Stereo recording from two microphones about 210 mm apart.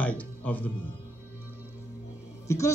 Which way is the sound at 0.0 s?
5° left (ahead or behind).